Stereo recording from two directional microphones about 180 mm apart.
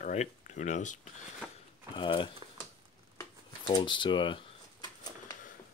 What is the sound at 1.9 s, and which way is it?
Speech, 25° left (ahead or behind).